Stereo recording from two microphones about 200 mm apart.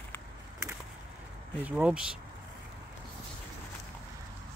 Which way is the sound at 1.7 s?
5° right (ahead or behind).